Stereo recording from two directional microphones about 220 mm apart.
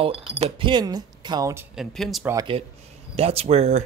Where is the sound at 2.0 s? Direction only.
Centre (ahead or behind).